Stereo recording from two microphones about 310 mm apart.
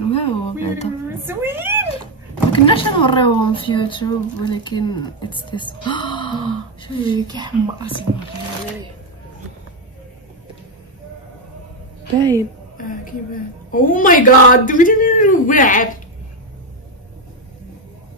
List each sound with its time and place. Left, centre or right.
0.1 s music: centre
1.0 s speech: centre
2.5 s speech: centre
7.2 s speech: centre
12.2 s speech: centre
12.7 s a sound: left
13.7 s a woman's voice: left